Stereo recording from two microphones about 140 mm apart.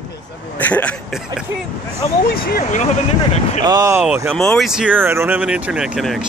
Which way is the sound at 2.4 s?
90° left.